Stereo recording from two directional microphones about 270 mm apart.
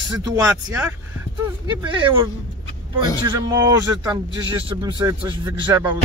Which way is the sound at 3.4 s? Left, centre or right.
Centre.